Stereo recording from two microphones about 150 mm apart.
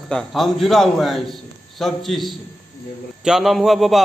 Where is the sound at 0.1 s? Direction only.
Centre (ahead or behind).